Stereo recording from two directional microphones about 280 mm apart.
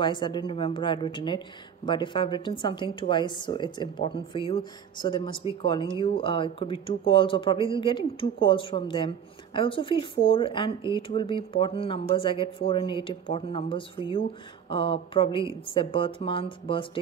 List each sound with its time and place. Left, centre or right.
0.0 s a woman's voice: centre